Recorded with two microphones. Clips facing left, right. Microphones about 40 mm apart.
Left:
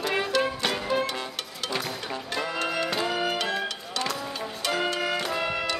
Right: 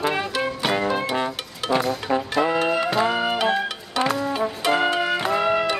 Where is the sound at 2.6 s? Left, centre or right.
Centre.